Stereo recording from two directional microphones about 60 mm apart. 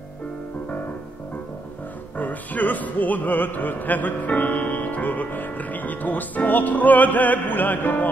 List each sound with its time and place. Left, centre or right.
2.1 s speech: left